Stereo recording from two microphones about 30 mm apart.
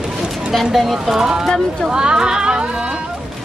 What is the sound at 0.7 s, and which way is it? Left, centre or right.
Speech, centre.